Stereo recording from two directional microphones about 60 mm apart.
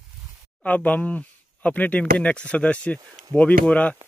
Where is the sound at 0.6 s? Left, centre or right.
Left.